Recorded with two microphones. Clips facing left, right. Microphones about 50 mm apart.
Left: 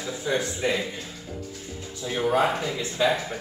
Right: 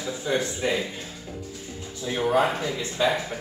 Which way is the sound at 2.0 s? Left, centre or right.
Centre.